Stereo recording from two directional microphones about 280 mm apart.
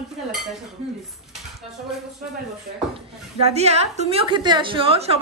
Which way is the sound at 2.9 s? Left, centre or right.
Right.